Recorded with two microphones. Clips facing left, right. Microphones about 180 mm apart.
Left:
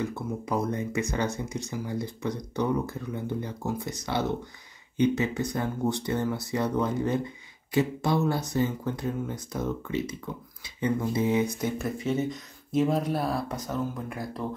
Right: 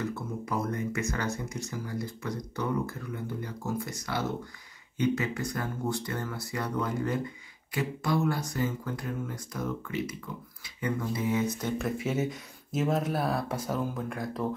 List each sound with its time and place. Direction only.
0.0 s speech: 15° left (ahead or behind)
11.4 s speech: 10° left (ahead or behind)
11.8 s speech: 5° right (ahead or behind)
14.0 s speech: 5° left (ahead or behind)